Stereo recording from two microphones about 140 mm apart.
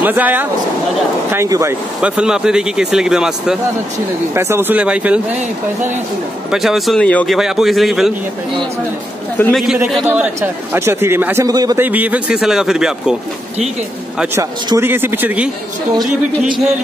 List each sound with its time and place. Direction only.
0.0 s a man's voice: 10° right (ahead or behind)
2.0 s speech: 5° right (ahead or behind)
4.3 s a man's voice: 20° right (ahead or behind)
6.5 s speech: centre (ahead or behind)
7.3 s speech: 5° right (ahead or behind)
9.5 s a man's voice: centre (ahead or behind); by 11.4 s 15° right (ahead or behind)
11.4 s speech: 25° right (ahead or behind)
11.8 s speech: 10° right (ahead or behind)
14.1 s a man's voice: 10° right (ahead or behind)
16.0 s speech: centre (ahead or behind)